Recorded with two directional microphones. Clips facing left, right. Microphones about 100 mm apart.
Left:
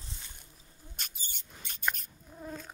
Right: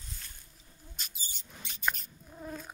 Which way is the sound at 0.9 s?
55° left (ahead or behind).